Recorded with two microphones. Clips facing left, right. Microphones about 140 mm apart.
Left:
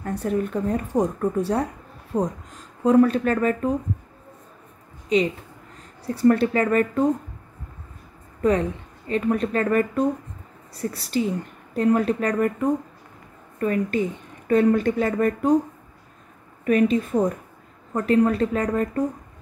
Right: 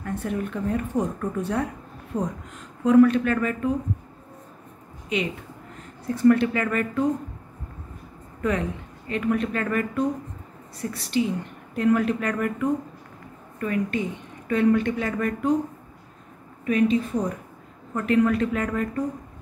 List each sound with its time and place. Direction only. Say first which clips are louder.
0.0 s a woman's voice: left 4 dB; 35° left (ahead or behind)
6.0 s a woman's voice: even; 35° left (ahead or behind)
8.4 s a woman's voice: left 5 dB; 35° left (ahead or behind)
16.6 s a woman's voice: left 2 dB; 50° left (ahead or behind)
17.9 s a woman's voice: left 2 dB; 35° left (ahead or behind)